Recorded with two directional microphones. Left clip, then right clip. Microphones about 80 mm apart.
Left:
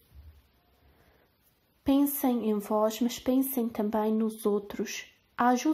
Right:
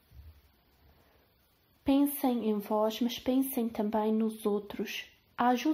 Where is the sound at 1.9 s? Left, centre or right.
Left.